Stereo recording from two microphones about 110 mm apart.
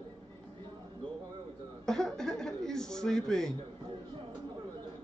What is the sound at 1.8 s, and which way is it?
Chuckle, 5° left (ahead or behind).